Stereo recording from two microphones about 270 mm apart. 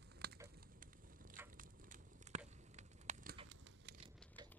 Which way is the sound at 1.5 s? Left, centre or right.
Right.